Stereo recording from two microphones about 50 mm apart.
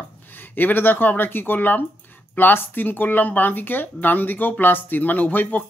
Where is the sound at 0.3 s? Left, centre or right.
Left.